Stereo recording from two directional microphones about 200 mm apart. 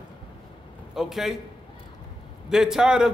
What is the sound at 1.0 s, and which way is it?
Speech, centre (ahead or behind).